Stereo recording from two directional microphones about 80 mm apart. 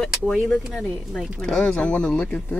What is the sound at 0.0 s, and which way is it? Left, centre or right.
Speech, centre.